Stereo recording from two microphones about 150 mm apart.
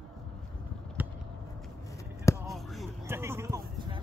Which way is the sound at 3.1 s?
15° right (ahead or behind).